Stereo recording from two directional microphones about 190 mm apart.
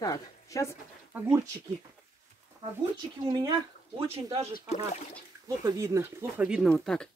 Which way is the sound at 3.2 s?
20° right (ahead or behind).